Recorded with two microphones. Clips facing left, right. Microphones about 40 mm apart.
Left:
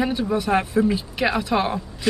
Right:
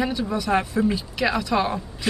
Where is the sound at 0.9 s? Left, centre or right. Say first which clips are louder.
Left 1 dB; centre.